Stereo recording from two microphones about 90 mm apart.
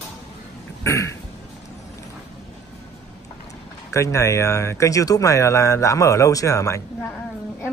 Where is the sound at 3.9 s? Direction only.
35° left (ahead or behind).